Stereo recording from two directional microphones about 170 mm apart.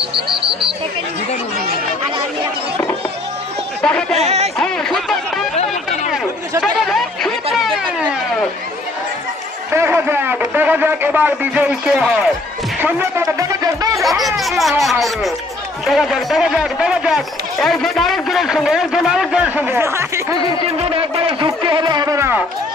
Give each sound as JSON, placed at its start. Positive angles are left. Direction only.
{"t": 0.1, "sound": "speech", "side_deg": -30}
{"t": 4.1, "sound": "speech", "side_deg": -40}
{"t": 4.6, "sound": "a man's voice", "side_deg": 5}
{"t": 6.6, "sound": "speech", "side_deg": 0}
{"t": 7.5, "sound": "a sound", "side_deg": 0}
{"t": 9.7, "sound": "a man's voice", "side_deg": -15}
{"t": 12.8, "sound": "music", "side_deg": -15}
{"t": 14.2, "sound": "a man's voice", "side_deg": 0}
{"t": 20.6, "sound": "speech", "side_deg": -35}